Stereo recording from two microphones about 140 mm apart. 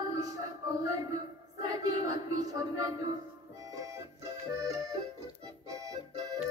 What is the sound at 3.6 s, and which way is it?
Music, 25° right (ahead or behind).